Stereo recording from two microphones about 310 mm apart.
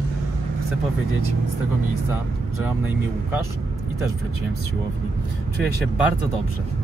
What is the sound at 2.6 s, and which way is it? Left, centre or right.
Speech, centre.